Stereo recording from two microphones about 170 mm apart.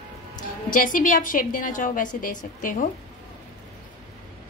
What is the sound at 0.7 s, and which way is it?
A woman's voice, 50° left (ahead or behind).